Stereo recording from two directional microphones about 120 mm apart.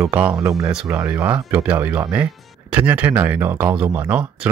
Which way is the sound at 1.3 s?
15° right (ahead or behind).